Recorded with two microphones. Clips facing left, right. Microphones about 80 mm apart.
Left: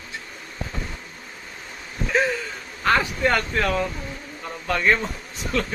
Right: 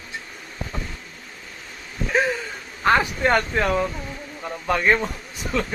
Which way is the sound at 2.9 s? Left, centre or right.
Right.